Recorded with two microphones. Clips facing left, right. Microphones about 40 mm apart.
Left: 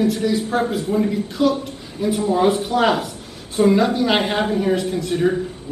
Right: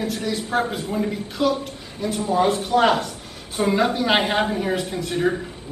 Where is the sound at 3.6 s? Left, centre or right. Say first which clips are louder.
Left 6 dB; right.